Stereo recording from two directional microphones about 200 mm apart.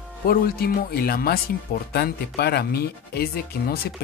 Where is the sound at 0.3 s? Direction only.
50° left (ahead or behind).